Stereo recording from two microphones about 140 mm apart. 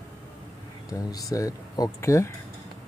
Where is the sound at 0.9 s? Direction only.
25° left (ahead or behind).